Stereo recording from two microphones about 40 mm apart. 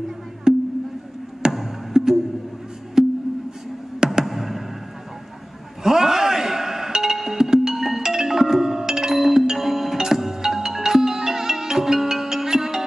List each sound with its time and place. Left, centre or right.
0.5 s a sound: right
1.5 s music: centre
4.3 s music: centre
5.9 s music: centre